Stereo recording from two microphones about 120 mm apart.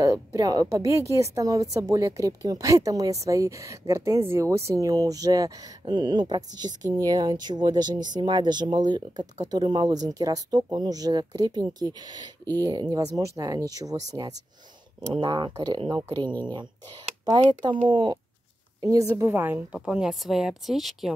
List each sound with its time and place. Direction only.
0.0 s a woman's voice: 30° right (ahead or behind)
17.2 s speech: 40° right (ahead or behind)
18.8 s a woman's voice: 30° right (ahead or behind)
19.2 s speech: 15° right (ahead or behind); by 21.1 s centre (ahead or behind)